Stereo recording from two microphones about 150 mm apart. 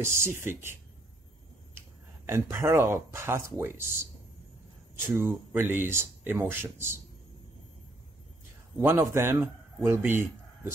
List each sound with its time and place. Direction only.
0.0 s speech: 15° right (ahead or behind)
2.5 s speech: 15° right (ahead or behind)
8.7 s a man's voice: 15° right (ahead or behind)